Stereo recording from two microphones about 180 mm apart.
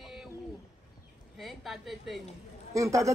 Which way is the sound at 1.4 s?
Centre (ahead or behind).